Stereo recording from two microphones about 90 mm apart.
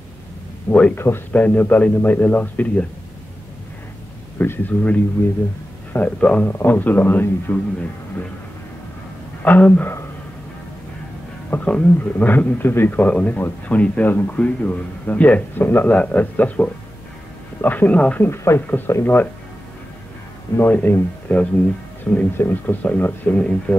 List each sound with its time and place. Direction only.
0.7 s a man's voice: 10° left (ahead or behind)
0.9 s speech: 25° left (ahead or behind)
1.3 s a man's voice: 15° left (ahead or behind)
4.4 s a man's voice: 20° left (ahead or behind)
9.4 s a man's voice: 15° left (ahead or behind)
11.5 s a man's voice: 15° left (ahead or behind)
18.3 s speech: 30° left (ahead or behind)
20.5 s speech: 25° left (ahead or behind)